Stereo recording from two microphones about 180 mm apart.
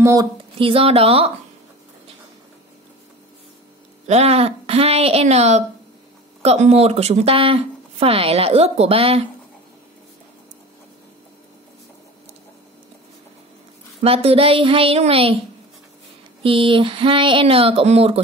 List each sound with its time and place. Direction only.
0.0 s speech: 20° right (ahead or behind)
0.6 s speech: 30° right (ahead or behind)
4.1 s speech: 35° right (ahead or behind)
14.0 s speech: 30° right (ahead or behind)
16.4 s speech: 30° right (ahead or behind)